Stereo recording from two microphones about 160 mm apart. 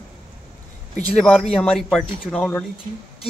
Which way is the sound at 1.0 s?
5° left (ahead or behind).